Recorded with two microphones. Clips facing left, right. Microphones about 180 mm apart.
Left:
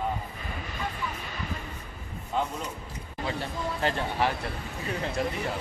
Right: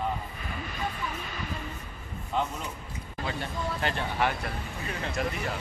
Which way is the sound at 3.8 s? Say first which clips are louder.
Left 2 dB; 35° left (ahead or behind).